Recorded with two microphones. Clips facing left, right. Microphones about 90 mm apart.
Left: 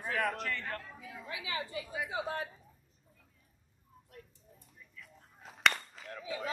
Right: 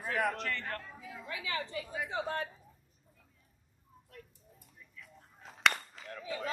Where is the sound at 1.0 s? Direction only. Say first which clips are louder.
Right 1 dB; 40° right (ahead or behind).